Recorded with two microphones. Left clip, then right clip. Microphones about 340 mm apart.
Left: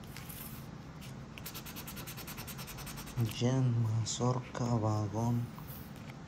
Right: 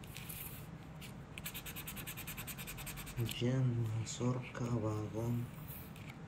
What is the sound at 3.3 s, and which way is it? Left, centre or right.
Speech, centre.